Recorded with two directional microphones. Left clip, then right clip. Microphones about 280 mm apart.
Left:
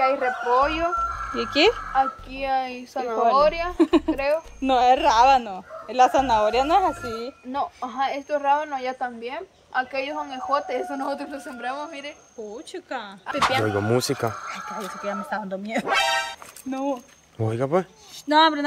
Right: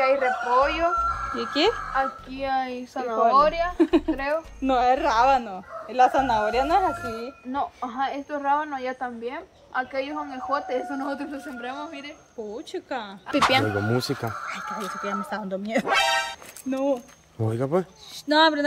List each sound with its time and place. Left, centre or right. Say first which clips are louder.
0.0 s a woman's voice: even; left
1.3 s a woman's voice: left 6 dB; left
3.7 s a woman's voice: left 1 dB; left
4.1 s a woman's voice: left 3 dB; left
4.6 s a woman's voice: left 3 dB; left
7.5 s a woman's voice: left 1 dB; left; by 12.1 s centre
12.5 s speech: right 1 dB; centre
13.7 s speech: left 3 dB; centre